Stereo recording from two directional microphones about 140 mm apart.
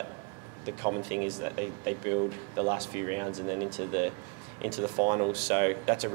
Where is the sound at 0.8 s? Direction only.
20° right (ahead or behind).